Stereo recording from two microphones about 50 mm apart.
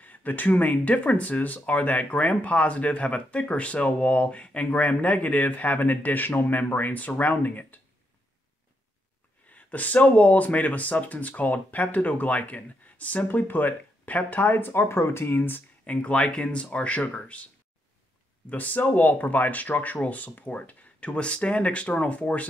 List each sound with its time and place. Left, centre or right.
0.0 s speech: left
9.5 s speech: left
14.7 s speech: left
15.8 s speech: left
18.5 s speech: left